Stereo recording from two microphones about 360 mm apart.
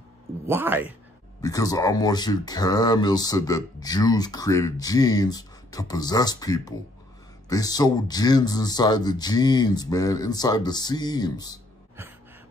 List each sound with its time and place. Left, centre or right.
0.5 s speech: centre
1.4 s speech: centre